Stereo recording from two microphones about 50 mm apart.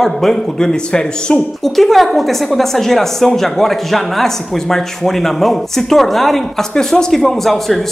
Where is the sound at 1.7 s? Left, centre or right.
Centre.